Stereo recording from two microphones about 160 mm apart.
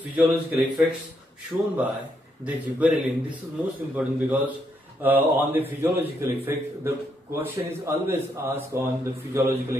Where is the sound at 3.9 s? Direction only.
10° right (ahead or behind).